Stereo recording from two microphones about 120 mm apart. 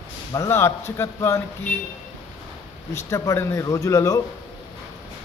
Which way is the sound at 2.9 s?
25° left (ahead or behind).